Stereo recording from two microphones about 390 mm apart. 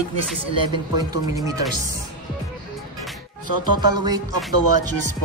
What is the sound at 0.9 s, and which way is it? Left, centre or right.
Speech, centre.